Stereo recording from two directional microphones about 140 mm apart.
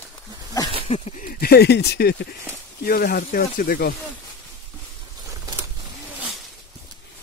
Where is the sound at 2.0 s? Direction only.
90° left.